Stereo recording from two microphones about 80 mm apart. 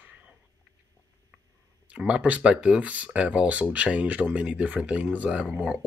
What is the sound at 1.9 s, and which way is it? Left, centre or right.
Speech, centre.